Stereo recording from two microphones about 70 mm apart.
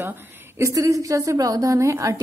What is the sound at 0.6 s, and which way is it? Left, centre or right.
A woman's voice, right.